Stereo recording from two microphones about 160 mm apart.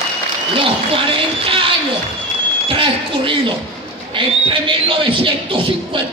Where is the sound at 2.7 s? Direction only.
35° right (ahead or behind).